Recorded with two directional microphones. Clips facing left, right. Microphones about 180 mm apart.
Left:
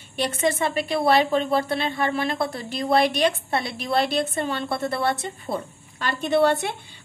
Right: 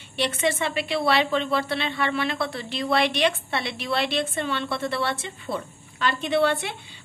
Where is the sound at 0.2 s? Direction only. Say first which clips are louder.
Left 2 dB; 40° left (ahead or behind).